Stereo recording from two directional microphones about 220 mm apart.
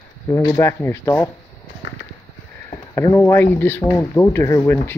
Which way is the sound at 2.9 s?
10° left (ahead or behind).